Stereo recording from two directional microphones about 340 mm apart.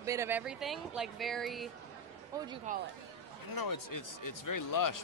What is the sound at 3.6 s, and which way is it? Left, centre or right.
Speech, left.